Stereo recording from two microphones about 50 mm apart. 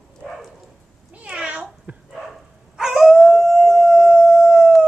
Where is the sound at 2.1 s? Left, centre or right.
Centre.